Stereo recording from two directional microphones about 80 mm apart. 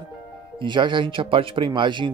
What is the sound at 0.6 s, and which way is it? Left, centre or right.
Speech, right.